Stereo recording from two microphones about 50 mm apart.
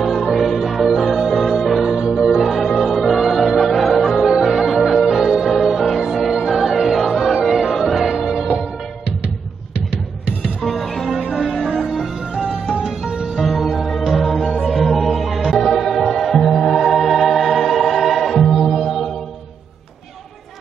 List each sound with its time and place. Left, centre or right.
0.0 s music: centre
1.9 s music: centre
10.6 s music: centre
11.1 s music: centre
13.4 s music: centre